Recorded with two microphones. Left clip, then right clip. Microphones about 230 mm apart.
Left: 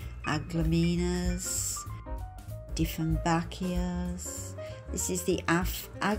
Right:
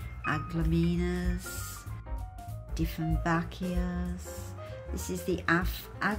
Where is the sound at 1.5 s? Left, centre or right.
Centre.